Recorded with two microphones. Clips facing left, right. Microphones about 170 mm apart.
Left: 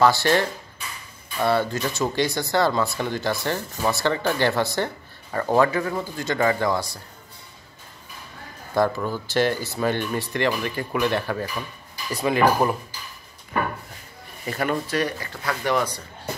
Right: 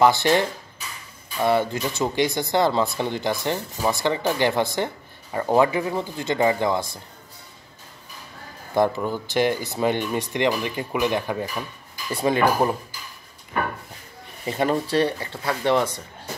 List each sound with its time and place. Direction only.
0.0 s speech: 20° right (ahead or behind)
8.7 s speech: 20° right (ahead or behind)
12.1 s speech: 30° right (ahead or behind)
14.5 s speech: 25° right (ahead or behind)